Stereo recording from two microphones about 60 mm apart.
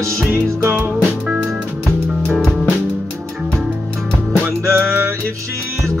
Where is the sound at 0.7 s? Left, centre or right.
Right.